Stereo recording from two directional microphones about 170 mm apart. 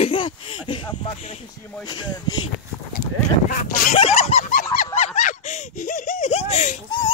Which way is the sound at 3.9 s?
35° left (ahead or behind).